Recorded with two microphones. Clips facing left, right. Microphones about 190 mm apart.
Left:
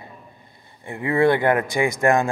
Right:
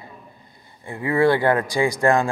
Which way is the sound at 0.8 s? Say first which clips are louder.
Even; 25° left (ahead or behind).